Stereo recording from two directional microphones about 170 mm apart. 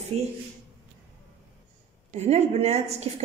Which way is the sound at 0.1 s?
40° right (ahead or behind).